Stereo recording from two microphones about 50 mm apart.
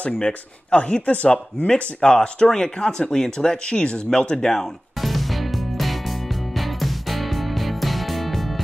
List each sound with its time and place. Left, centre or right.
0.0 s speech: left
1.7 s speech: centre
6.8 s music: centre